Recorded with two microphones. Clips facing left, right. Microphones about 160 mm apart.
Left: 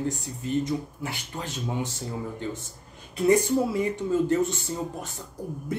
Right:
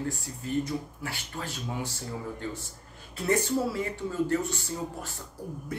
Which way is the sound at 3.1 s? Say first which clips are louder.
Left 6 dB; 15° left (ahead or behind).